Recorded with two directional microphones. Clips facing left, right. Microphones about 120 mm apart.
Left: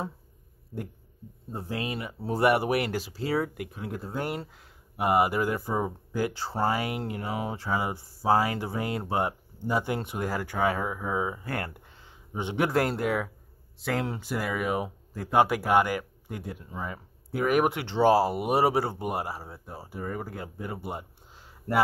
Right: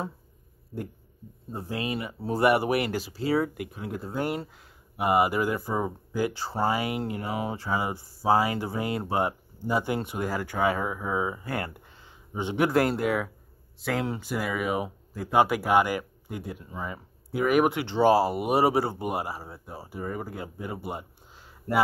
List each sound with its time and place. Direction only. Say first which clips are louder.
1.5 s speech: right 2 dB; centre (ahead or behind)